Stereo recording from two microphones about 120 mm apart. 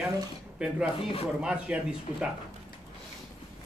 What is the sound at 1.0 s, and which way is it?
Speech, 50° left (ahead or behind).